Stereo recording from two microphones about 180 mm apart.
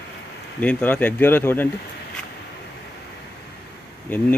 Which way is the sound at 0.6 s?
10° left (ahead or behind).